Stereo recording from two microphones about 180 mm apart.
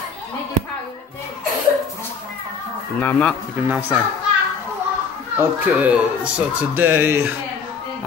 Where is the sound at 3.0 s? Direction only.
10° left (ahead or behind).